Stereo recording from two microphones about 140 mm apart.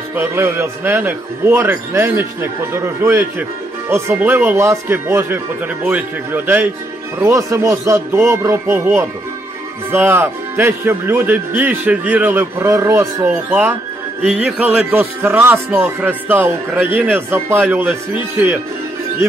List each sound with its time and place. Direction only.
0.1 s a man's voice: 15° right (ahead or behind)